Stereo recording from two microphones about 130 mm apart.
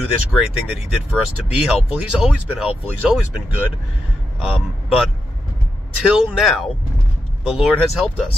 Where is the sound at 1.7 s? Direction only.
5° right (ahead or behind).